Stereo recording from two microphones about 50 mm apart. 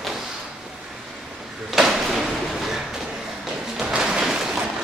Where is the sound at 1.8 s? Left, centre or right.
Centre.